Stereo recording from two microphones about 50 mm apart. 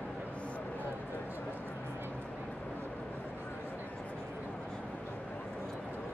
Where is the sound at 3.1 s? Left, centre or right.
Left.